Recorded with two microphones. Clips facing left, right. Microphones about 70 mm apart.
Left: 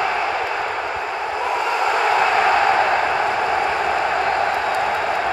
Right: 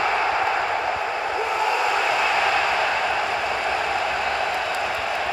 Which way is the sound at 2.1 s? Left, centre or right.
Left.